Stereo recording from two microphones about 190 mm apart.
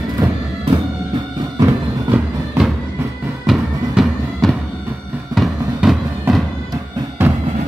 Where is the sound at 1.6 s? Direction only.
10° right (ahead or behind).